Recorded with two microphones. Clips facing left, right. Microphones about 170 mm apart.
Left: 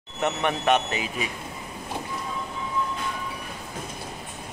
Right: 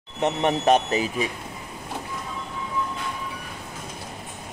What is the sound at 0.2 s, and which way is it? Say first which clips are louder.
Speech: right 3 dB; 30° right (ahead or behind).